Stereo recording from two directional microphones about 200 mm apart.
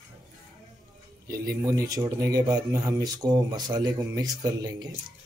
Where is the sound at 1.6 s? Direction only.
15° right (ahead or behind).